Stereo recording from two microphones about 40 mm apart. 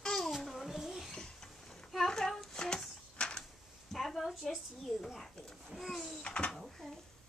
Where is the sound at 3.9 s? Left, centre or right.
Centre.